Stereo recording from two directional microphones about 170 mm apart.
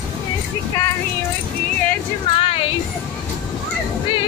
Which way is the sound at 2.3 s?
35° left (ahead or behind).